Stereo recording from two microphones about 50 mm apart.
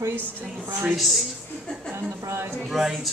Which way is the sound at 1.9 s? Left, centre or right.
Right.